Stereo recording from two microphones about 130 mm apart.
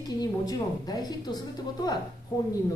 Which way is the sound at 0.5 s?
30° left (ahead or behind).